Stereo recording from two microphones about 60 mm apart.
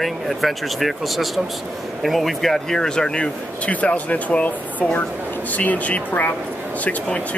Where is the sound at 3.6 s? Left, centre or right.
Left.